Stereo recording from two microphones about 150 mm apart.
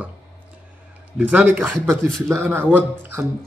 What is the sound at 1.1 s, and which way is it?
Speech, 5° right (ahead or behind).